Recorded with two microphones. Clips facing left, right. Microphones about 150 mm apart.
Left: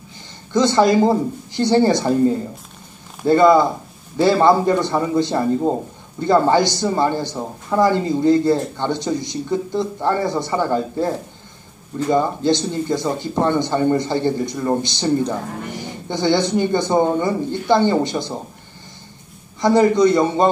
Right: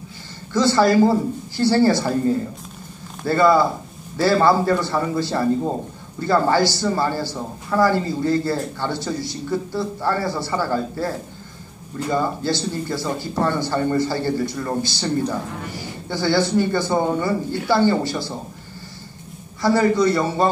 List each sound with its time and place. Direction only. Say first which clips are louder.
0.5 s a man's voice: left 2 dB; 20° left (ahead or behind)
3.3 s a man's voice: left 4 dB; 20° left (ahead or behind)
19.6 s a man's voice: left 3 dB; 20° left (ahead or behind)